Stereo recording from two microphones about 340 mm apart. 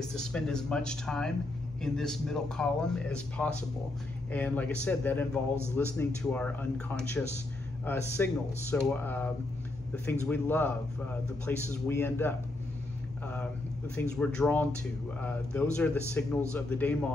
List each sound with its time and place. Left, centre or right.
0.0 s a man's voice: centre
13.9 s speech: centre